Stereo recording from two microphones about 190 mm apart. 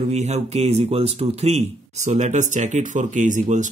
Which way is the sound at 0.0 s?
35° right (ahead or behind).